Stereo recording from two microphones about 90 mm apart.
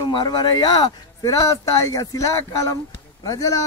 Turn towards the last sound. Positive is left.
turn(degrees=40)  # may be behind; listen again after turning